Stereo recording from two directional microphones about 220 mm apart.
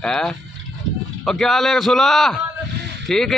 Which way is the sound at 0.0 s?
5° left (ahead or behind).